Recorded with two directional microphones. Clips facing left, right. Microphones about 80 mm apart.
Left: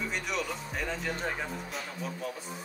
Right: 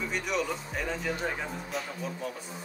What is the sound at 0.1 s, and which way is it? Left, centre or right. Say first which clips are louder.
Speech: right 3 dB; centre.